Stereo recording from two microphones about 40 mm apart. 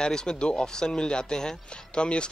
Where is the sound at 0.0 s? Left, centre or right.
Centre.